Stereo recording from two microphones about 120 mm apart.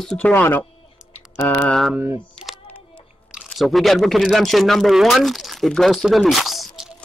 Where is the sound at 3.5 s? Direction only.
Centre (ahead or behind).